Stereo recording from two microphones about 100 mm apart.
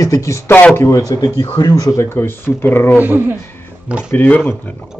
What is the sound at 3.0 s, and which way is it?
Speech, 20° right (ahead or behind).